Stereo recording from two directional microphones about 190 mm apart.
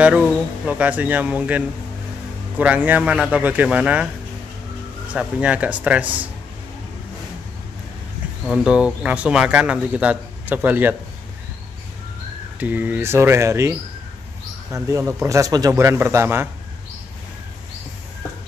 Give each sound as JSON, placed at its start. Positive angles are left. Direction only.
{"t": 0.7, "sound": "speech", "side_deg": -5}
{"t": 5.1, "sound": "speech", "side_deg": -5}
{"t": 8.5, "sound": "speech", "side_deg": -5}
{"t": 12.5, "sound": "speech", "side_deg": -10}